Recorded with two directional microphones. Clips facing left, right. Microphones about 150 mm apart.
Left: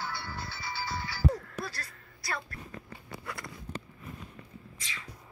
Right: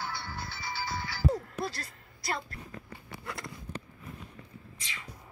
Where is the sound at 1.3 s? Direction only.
25° right (ahead or behind).